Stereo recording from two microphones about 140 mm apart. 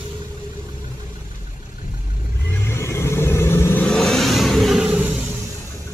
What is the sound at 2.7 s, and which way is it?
Vehicle, 20° left (ahead or behind).